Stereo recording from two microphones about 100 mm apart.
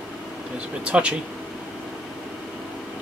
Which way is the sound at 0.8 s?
10° right (ahead or behind).